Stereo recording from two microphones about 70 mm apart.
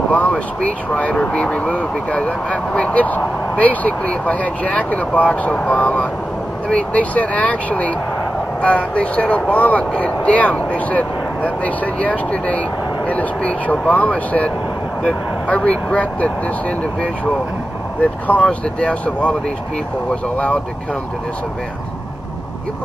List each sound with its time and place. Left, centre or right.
0.1 s speech: centre
18.2 s speech: centre